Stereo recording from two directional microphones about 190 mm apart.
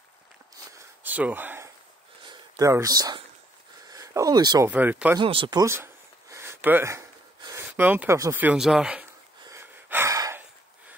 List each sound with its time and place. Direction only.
0.7 s a sound: 10° right (ahead or behind)
3.9 s speech: 15° right (ahead or behind)
4.6 s speech: 10° right (ahead or behind)
5.2 s speech: 25° right (ahead or behind); by 9.0 s 5° right (ahead or behind)
9.5 s gasp: 10° right (ahead or behind)